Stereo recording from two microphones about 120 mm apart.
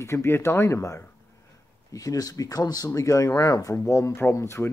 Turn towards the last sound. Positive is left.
turn(degrees=20)  # may be behind; listen again after turning